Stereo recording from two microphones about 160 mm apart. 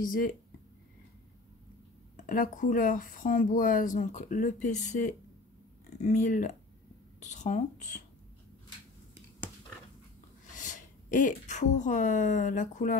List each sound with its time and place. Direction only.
0.0 s speech: 60° left (ahead or behind)
2.1 s speech: 60° left (ahead or behind)
10.6 s speech: 50° left (ahead or behind)